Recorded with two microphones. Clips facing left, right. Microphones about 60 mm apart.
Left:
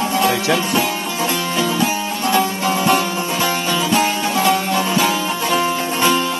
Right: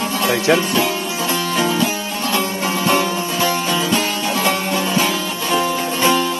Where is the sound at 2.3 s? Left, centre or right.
Left.